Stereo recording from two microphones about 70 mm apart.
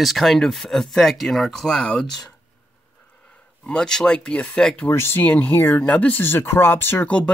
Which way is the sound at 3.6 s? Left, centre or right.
Centre.